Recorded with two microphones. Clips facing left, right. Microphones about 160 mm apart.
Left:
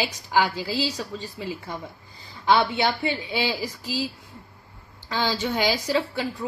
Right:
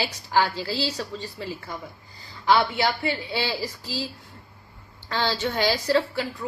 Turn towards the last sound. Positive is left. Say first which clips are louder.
# right 2 dB
turn(degrees=15)  # may be behind; listen again after turning